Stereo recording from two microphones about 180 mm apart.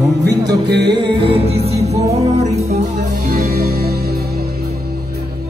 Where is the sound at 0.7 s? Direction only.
70° right (ahead or behind).